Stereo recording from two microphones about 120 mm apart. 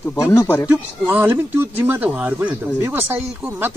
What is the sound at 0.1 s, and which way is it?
Speech, 25° left (ahead or behind).